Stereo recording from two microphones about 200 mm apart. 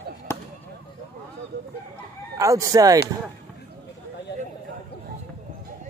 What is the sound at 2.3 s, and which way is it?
Speech, 15° right (ahead or behind).